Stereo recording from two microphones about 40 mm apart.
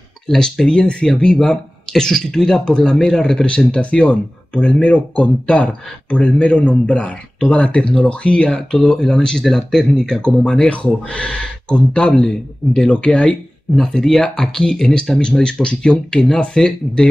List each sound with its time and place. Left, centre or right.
0.3 s speech: centre
3.4 s a man's voice: left
10.7 s speech: left
11.1 s a man's voice: left
12.1 s speech: centre
12.8 s a man's voice: left
13.7 s a man's voice: centre